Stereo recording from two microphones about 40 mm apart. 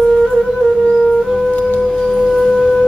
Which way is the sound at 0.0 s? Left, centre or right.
Centre.